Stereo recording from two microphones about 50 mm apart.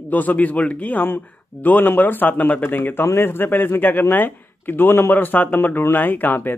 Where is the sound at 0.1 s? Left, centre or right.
Left.